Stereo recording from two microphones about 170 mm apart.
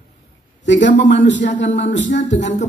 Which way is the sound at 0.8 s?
90° left.